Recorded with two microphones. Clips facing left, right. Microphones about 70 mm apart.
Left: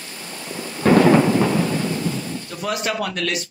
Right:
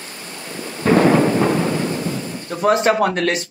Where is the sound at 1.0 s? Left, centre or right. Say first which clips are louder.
Right 1 dB; right.